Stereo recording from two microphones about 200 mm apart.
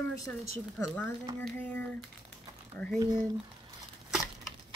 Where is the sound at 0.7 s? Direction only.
Centre (ahead or behind).